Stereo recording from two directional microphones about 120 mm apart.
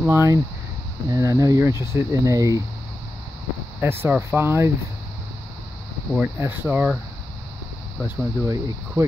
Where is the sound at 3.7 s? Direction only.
20° right (ahead or behind).